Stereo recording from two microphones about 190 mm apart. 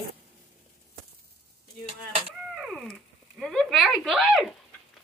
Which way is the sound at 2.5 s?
Centre (ahead or behind).